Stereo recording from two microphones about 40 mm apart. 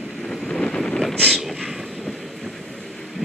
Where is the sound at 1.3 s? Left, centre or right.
Centre.